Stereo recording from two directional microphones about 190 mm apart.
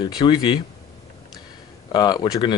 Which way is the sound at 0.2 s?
25° left (ahead or behind).